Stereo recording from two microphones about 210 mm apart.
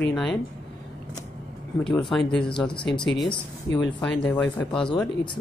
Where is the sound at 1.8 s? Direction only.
5° left (ahead or behind).